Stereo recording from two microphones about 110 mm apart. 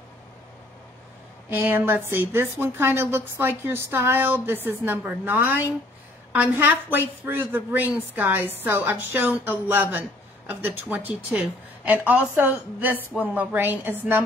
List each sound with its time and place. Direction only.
1.5 s a woman's voice: 20° right (ahead or behind)